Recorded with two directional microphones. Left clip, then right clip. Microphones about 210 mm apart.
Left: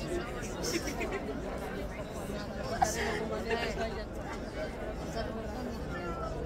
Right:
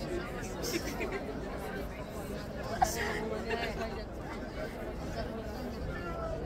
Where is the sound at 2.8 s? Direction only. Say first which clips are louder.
Even; 15° right (ahead or behind).